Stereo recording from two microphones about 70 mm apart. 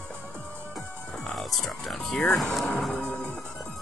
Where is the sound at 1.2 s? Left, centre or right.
Centre.